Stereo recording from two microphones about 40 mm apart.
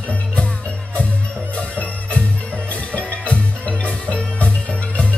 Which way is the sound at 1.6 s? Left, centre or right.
Left.